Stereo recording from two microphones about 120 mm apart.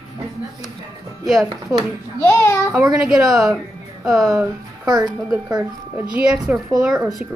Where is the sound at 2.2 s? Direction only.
20° left (ahead or behind).